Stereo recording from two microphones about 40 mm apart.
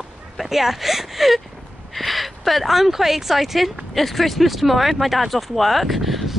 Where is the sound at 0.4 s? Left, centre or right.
Centre.